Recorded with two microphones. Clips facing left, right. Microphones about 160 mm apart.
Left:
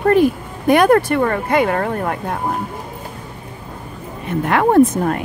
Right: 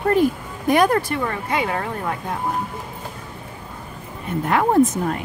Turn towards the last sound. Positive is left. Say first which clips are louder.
# left 4 dB
turn(degrees=65)  # may be behind; listen again after turning